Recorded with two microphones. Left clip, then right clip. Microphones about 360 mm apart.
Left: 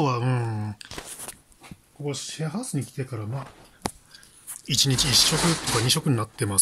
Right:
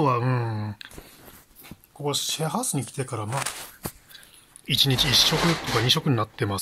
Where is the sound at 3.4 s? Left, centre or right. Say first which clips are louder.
Right 10 dB; right.